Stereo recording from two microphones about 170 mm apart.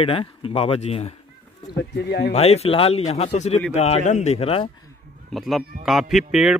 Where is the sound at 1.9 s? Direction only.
85° left.